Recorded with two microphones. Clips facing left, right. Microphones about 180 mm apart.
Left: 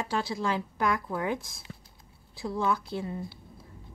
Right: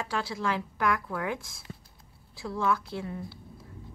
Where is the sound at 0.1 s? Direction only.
20° left (ahead or behind).